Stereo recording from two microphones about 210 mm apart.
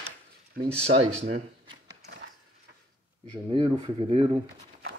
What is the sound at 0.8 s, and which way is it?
Speech, 30° right (ahead or behind).